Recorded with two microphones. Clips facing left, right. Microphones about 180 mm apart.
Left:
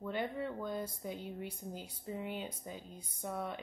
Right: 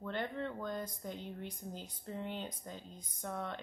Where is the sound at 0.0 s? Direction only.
10° left (ahead or behind).